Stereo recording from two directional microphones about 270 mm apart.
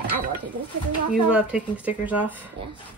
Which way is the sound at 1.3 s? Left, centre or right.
Centre.